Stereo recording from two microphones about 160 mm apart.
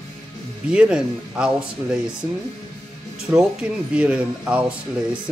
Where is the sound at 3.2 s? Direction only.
5° right (ahead or behind).